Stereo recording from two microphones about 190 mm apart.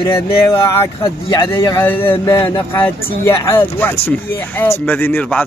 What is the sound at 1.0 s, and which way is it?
A man's voice, 15° left (ahead or behind).